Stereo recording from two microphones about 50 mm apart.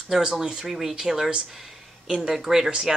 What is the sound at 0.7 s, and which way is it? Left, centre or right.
Speech, centre.